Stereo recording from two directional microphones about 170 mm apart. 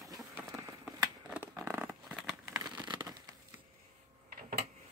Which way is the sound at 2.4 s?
15° right (ahead or behind).